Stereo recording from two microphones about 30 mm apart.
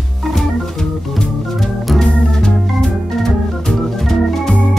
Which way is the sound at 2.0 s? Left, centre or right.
Left.